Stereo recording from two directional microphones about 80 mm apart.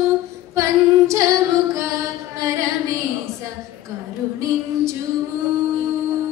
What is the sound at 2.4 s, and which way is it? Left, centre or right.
Music, right.